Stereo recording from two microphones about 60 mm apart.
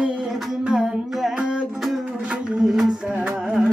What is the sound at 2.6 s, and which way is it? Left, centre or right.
Music, centre.